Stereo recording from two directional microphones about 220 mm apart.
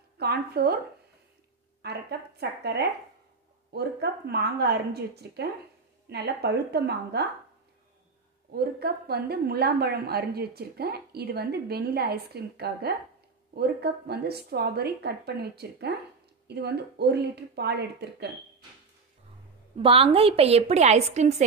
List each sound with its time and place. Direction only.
0.2 s a woman's voice: 45° right (ahead or behind)
1.8 s a woman's voice: 45° right (ahead or behind)
8.5 s a woman's voice: 45° right (ahead or behind)
19.8 s a woman's voice: 25° right (ahead or behind)